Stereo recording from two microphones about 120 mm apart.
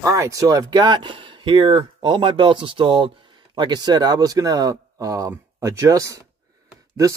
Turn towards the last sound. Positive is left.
turn(degrees=-25)  # may be behind; listen again after turning